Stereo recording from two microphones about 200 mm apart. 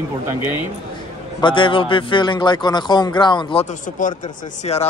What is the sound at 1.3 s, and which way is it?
A man's voice, 25° left (ahead or behind).